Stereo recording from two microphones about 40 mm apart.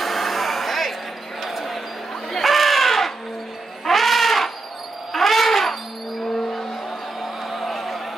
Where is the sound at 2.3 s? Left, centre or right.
Centre.